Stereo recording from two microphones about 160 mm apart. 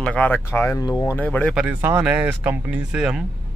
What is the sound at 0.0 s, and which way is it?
Speech, 10° left (ahead or behind).